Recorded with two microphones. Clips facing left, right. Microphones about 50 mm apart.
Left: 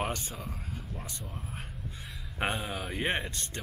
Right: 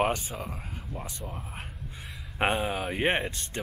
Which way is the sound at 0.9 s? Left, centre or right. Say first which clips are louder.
Right 4 dB; right.